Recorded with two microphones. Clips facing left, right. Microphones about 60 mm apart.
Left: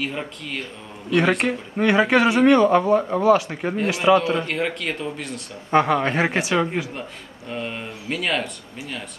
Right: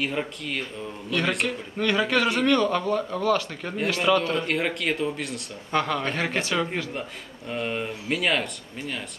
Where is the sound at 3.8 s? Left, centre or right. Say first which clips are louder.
Left 4 dB; centre.